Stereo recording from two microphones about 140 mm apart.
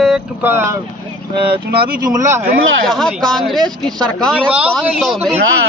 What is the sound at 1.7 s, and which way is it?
Speech, 90° right.